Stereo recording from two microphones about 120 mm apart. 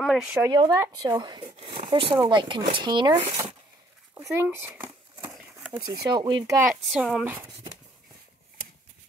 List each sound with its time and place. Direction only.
0.0 s speech: centre (ahead or behind)
0.5 s speech: 35° right (ahead or behind)
3.2 s speech: 20° right (ahead or behind)
5.7 s speech: 35° right (ahead or behind)
6.7 s a woman's voice: 5° right (ahead or behind)
7.2 s speech: 20° right (ahead or behind)